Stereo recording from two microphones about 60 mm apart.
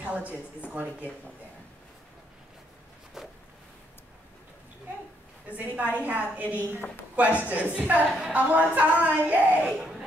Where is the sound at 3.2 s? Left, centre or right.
Centre.